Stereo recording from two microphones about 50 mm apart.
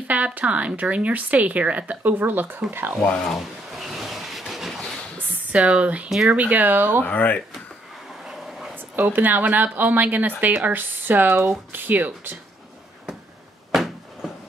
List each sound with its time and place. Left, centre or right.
0.1 s speech: right
3.3 s a sound: centre
5.6 s speech: right
6.0 s speech: centre
6.3 s speech: right
7.0 s speech: left
8.2 s vehicle: centre
8.7 s speech: right
13.7 s a sound: centre